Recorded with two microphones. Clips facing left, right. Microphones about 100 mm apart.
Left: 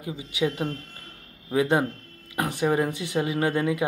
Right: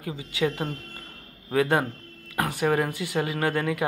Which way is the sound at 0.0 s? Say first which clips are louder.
Even; 20° left (ahead or behind).